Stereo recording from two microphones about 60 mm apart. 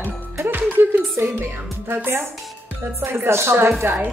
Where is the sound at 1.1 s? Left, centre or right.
Right.